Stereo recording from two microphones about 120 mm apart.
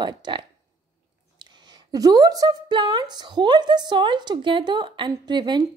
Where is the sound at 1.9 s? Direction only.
35° right (ahead or behind).